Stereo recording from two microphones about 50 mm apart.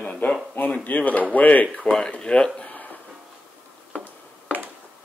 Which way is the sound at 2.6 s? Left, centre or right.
Left.